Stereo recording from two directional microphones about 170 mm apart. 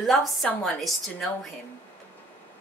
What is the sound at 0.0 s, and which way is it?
A woman's voice, centre (ahead or behind).